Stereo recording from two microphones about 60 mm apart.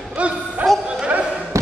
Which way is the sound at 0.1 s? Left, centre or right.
Centre.